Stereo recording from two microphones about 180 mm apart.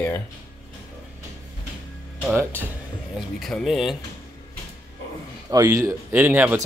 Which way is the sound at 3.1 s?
Centre (ahead or behind).